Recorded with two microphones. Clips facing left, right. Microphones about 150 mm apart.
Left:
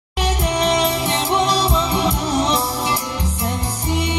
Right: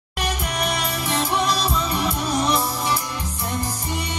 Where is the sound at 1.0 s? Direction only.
30° left (ahead or behind).